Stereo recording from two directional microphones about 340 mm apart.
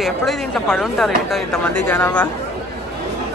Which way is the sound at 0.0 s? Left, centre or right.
Centre.